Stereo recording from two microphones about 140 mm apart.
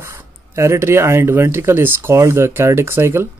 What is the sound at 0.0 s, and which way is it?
Speech, 20° right (ahead or behind).